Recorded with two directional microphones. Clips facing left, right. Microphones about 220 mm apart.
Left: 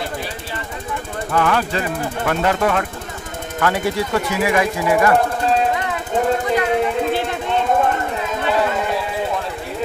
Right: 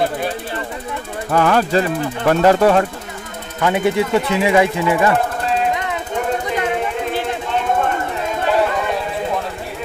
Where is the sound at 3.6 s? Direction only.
20° right (ahead or behind).